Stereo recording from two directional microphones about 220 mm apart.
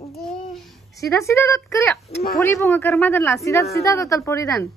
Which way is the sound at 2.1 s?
45° left (ahead or behind).